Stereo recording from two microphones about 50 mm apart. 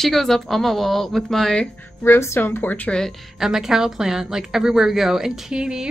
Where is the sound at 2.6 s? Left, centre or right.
Left.